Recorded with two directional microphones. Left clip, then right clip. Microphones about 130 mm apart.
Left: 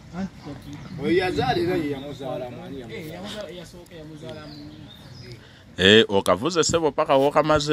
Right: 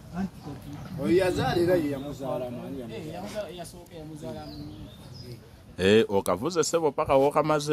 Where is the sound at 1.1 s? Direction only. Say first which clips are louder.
Left 2 dB; 45° right (ahead or behind).